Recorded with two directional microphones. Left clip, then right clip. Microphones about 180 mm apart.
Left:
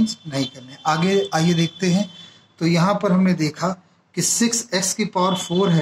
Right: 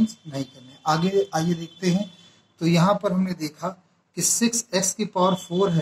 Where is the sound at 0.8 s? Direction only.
45° left (ahead or behind).